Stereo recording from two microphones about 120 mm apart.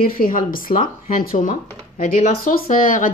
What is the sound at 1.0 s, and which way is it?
Speech, 90° left.